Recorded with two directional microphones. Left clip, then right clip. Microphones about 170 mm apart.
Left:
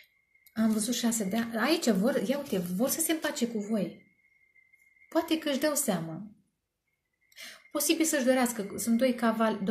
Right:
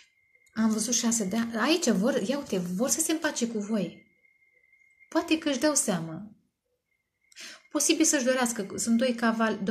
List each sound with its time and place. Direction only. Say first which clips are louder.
0.5 s a woman's voice: right 2 dB; 45° right (ahead or behind)
5.1 s a woman's voice: right 2 dB; 40° right (ahead or behind)
7.3 s a woman's voice: right 3 dB; 40° right (ahead or behind)